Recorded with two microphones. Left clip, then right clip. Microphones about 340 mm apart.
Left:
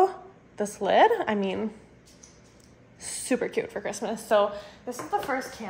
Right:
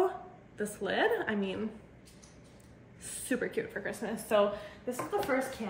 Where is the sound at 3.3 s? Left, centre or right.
Centre.